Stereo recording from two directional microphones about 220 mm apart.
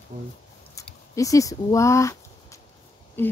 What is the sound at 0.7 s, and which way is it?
Speech, 15° left (ahead or behind).